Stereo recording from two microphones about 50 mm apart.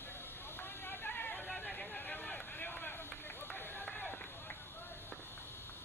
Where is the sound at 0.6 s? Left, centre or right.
Left.